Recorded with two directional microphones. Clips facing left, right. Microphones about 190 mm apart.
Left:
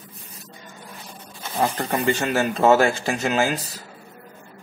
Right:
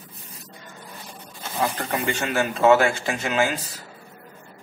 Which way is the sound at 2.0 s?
40° left (ahead or behind).